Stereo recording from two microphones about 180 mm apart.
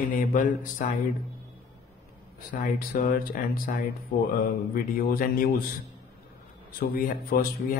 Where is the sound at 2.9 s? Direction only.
50° left (ahead or behind).